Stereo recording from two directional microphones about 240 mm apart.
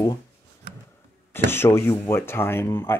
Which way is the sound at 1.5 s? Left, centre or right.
Centre.